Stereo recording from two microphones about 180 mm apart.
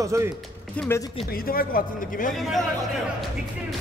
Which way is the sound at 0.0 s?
15° right (ahead or behind).